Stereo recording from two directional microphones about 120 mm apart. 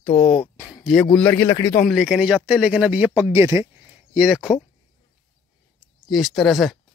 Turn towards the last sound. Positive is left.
turn(degrees=0)  # may be behind; listen again after turning